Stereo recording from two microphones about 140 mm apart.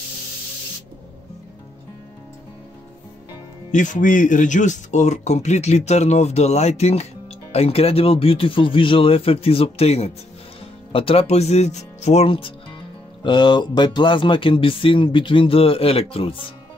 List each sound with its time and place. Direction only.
3.7 s speech: 65° left (ahead or behind); by 16.4 s 40° left (ahead or behind)